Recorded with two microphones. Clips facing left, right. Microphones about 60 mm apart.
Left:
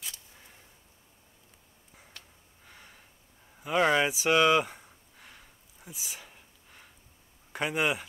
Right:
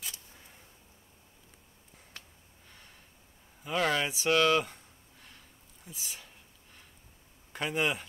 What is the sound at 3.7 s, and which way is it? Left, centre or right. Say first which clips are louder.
Speech: left 5 dB; left.